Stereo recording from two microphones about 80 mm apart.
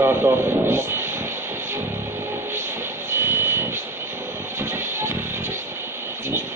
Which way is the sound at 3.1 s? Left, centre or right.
Right.